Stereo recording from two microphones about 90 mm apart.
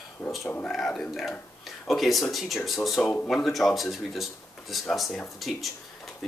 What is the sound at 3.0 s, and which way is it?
Speech, 20° left (ahead or behind).